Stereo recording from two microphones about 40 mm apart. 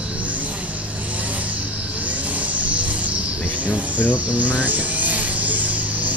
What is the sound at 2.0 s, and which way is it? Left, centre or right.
Music, right.